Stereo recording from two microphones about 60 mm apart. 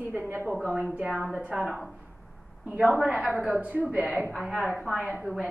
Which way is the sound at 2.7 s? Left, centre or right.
Centre.